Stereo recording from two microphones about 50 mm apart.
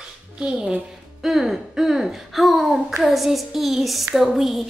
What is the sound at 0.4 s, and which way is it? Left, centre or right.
Speech, centre.